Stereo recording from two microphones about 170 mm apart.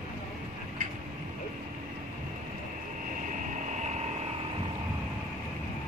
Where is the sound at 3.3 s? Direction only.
45° right (ahead or behind).